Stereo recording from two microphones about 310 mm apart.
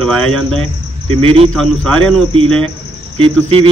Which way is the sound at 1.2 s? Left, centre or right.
Centre.